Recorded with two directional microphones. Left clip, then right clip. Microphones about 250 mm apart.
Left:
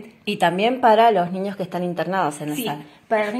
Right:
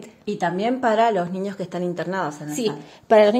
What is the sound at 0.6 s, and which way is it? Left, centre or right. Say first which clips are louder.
A woman's voice: left 4 dB; centre.